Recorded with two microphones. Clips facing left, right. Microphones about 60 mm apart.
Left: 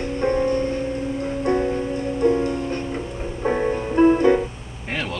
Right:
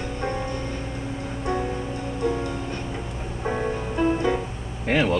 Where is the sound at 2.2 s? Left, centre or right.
Left.